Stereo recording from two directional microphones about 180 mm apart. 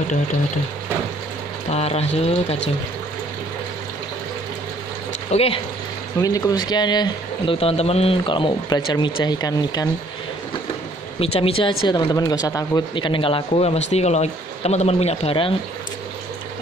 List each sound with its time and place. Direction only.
1.7 s speech: 35° left (ahead or behind)
5.3 s speech: 35° left (ahead or behind)
6.1 s speech: 20° left (ahead or behind)
11.1 s speech: 30° left (ahead or behind)